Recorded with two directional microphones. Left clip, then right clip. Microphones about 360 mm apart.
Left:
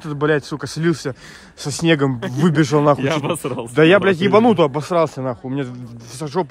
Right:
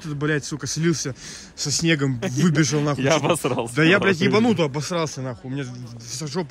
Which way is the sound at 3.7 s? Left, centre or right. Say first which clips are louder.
Left 6 dB; centre.